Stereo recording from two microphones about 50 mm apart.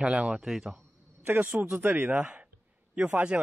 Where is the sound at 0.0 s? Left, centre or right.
Centre.